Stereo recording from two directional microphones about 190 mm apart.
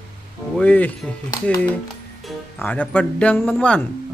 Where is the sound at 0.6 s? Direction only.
10° left (ahead or behind).